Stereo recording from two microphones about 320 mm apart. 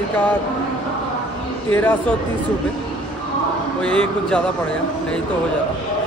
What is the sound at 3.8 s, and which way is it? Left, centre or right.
Speech, centre.